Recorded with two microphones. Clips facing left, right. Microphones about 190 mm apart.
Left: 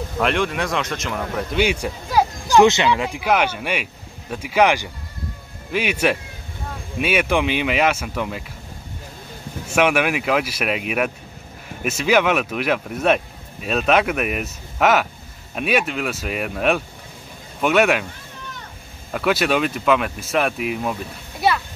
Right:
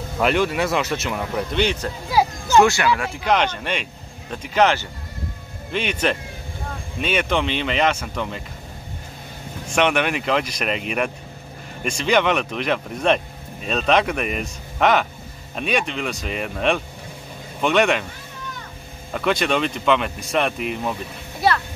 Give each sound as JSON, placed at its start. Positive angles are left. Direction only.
{"t": 0.2, "sound": "speech", "side_deg": -5}
{"t": 2.6, "sound": "speech", "side_deg": 20}
{"t": 9.7, "sound": "speech", "side_deg": 5}
{"t": 19.1, "sound": "speech", "side_deg": 5}